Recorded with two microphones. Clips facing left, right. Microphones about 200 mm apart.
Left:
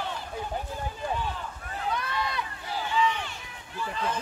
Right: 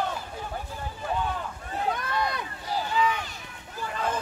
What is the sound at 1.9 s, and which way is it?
Run, 45° right (ahead or behind).